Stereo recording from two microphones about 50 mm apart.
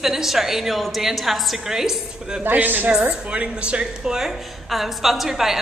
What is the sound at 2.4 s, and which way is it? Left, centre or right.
Speech, right.